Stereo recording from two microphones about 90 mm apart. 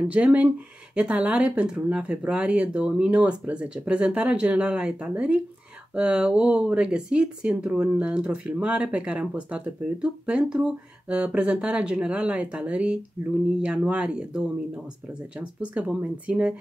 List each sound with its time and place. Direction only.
0.1 s speech: 15° right (ahead or behind)